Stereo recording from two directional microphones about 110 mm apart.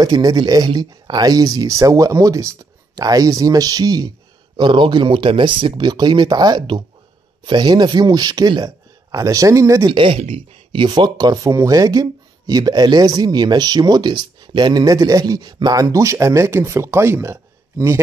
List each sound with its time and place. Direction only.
0.0 s speech: 40° right (ahead or behind)
4.6 s speech: 45° right (ahead or behind); by 9.8 s 30° right (ahead or behind)
9.8 s speech: 50° right (ahead or behind); by 18.0 s 25° right (ahead or behind)